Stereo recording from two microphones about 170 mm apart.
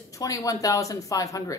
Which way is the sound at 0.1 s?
20° left (ahead or behind).